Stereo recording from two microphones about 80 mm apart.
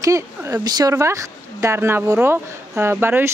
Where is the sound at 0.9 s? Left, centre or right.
Right.